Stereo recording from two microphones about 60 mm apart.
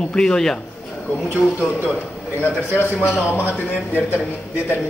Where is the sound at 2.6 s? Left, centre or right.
Left.